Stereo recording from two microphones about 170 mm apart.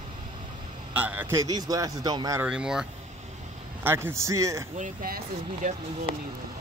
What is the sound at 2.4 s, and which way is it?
A man's voice, 5° right (ahead or behind).